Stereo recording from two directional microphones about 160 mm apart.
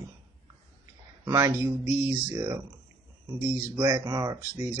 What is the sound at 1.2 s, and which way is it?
Speech, 20° right (ahead or behind).